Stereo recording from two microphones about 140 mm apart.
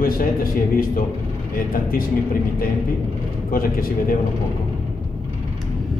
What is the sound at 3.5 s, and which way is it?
Speech, 90° left.